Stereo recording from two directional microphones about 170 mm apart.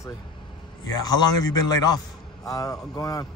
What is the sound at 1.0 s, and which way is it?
Speech, 20° left (ahead or behind).